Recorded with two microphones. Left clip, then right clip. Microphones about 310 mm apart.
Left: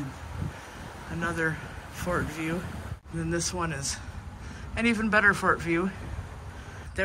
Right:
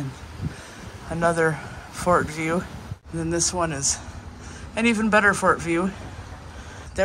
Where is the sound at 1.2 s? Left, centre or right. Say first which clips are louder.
Right 9 dB; centre.